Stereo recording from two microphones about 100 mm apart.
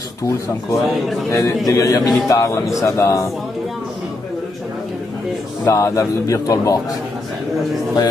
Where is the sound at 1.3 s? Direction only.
30° left (ahead or behind).